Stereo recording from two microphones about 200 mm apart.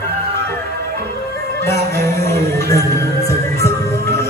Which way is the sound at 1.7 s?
50° right (ahead or behind).